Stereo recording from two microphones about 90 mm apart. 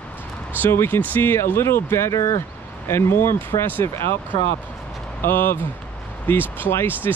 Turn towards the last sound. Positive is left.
turn(degrees=25)  # may be behind; listen again after turning